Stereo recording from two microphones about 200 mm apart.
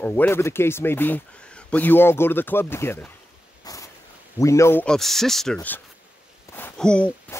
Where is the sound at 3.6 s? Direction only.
15° left (ahead or behind).